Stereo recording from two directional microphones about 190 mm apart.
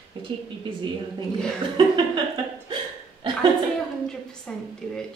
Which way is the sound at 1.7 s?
25° right (ahead or behind).